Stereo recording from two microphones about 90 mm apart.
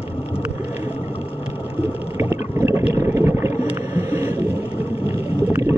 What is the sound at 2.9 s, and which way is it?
Boat, 30° right (ahead or behind).